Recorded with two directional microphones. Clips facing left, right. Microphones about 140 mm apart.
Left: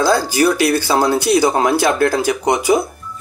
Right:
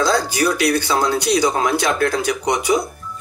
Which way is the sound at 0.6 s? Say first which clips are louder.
Left 3 dB; 35° left (ahead or behind).